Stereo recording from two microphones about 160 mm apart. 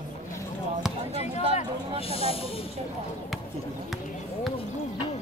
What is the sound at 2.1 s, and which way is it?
Snake, 35° left (ahead or behind).